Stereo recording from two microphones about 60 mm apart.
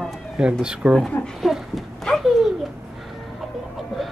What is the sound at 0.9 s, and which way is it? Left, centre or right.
Speech, centre.